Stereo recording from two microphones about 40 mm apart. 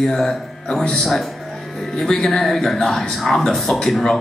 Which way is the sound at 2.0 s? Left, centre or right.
Centre.